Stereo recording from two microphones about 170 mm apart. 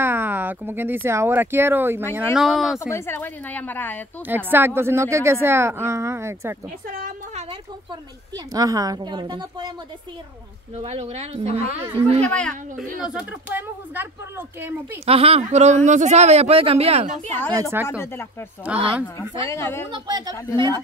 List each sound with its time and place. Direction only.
0.0 s speech: 10° right (ahead or behind)
2.3 s speech: centre (ahead or behind)
2.9 s a woman's voice: 15° left (ahead or behind)
4.5 s speech: 10° right (ahead or behind)
6.9 s a woman's voice: 55° right (ahead or behind)
8.5 s a woman's voice: 20° right (ahead or behind)
10.8 s speech: 40° right (ahead or behind)
12.2 s a woman's voice: 5° left (ahead or behind); by 15.0 s 15° right (ahead or behind)
15.0 s speech: 35° right (ahead or behind)
17.5 s a woman's voice: 20° right (ahead or behind)
17.8 s a woman's voice: 15° left (ahead or behind)
18.7 s speech: 5° right (ahead or behind)
19.1 s a woman's voice: 15° left (ahead or behind)
19.9 s a woman's voice: 25° right (ahead or behind)